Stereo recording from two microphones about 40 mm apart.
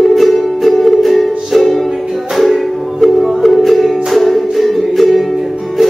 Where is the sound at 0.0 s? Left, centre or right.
Centre.